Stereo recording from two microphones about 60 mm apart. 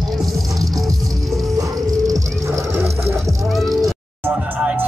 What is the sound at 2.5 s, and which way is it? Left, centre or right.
Sewing machine, right.